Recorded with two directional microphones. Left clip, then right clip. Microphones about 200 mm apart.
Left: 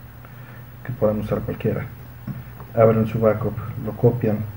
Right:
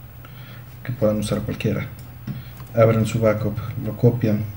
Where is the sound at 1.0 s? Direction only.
25° right (ahead or behind).